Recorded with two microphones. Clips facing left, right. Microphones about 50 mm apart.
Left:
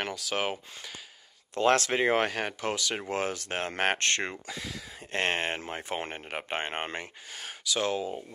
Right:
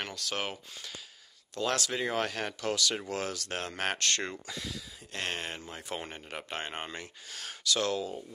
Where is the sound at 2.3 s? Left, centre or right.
Centre.